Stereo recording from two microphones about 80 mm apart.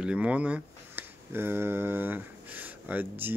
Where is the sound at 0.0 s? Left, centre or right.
Centre.